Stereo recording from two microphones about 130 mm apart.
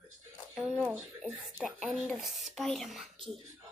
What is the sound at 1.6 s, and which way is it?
Speech, 5° right (ahead or behind).